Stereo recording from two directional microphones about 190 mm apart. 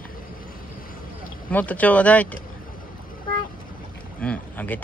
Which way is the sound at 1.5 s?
10° left (ahead or behind).